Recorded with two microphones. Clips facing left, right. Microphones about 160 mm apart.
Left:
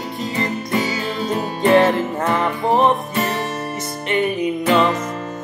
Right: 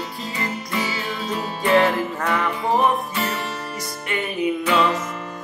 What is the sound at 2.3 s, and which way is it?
Music, 25° left (ahead or behind).